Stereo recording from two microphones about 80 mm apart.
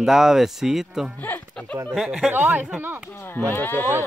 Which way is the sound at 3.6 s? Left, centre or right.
Left.